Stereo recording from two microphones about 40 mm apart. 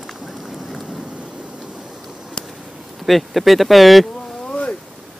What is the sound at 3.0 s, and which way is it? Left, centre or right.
Speech, centre.